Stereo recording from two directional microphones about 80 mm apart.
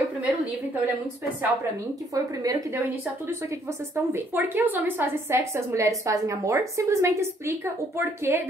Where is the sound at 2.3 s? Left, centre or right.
Right.